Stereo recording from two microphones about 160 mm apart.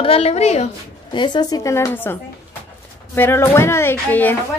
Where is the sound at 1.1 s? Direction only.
30° left (ahead or behind).